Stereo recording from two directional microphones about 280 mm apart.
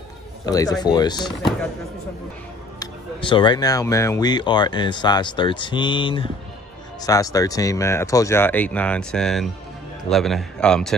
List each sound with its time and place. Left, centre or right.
0.5 s speech: centre
1.3 s a man's voice: centre
2.8 s a man's voice: centre